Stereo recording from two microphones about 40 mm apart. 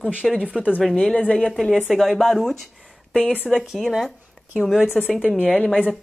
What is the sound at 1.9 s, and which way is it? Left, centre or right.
Speech, centre.